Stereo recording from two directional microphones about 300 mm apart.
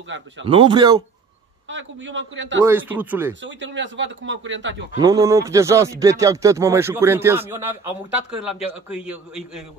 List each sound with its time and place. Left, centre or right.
0.5 s speech: centre
1.7 s speech: right
2.6 s speech: centre
3.3 s speech: right
4.9 s a man's voice: centre